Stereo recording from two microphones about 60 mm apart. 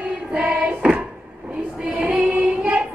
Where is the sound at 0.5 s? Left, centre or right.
Centre.